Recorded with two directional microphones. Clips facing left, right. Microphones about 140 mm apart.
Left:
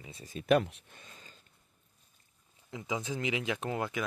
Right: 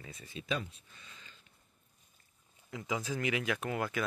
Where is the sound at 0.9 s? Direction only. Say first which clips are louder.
Left 3 dB; 45° left (ahead or behind).